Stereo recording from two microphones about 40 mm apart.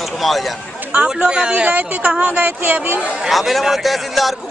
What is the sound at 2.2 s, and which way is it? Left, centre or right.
Speech, right.